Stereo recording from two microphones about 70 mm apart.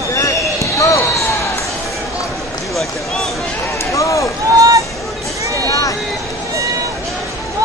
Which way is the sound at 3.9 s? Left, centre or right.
Left.